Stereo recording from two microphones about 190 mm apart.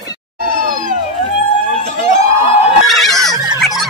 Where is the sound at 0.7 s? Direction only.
45° right (ahead or behind).